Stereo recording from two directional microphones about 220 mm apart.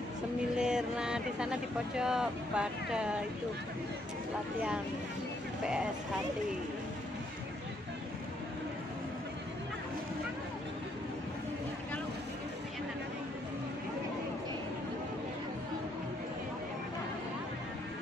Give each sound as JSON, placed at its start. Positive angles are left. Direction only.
{"t": 0.6, "sound": "speech", "side_deg": -5}
{"t": 5.6, "sound": "speech", "side_deg": -5}